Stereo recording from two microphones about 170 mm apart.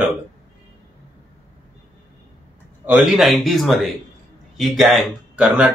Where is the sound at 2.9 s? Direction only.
Centre (ahead or behind).